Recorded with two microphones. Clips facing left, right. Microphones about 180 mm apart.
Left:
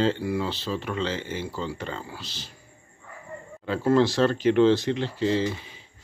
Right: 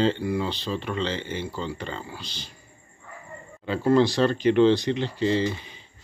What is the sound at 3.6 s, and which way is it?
Speech, centre (ahead or behind).